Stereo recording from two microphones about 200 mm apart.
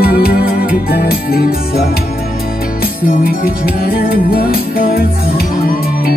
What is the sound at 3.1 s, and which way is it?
Music, 45° left (ahead or behind).